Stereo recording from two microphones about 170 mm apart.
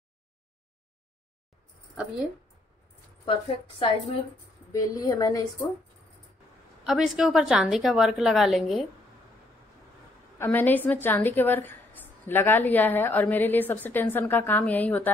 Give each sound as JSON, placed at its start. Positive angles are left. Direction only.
{"t": 3.3, "sound": "a woman's voice", "side_deg": 30}
{"t": 4.7, "sound": "a woman's voice", "side_deg": 20}
{"t": 6.9, "sound": "a woman's voice", "side_deg": -5}
{"t": 10.4, "sound": "a woman's voice", "side_deg": 10}